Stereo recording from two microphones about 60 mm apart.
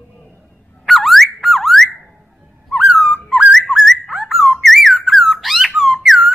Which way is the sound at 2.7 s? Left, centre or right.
Centre.